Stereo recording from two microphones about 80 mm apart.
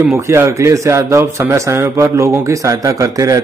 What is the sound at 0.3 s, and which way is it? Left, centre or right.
A man's voice, right.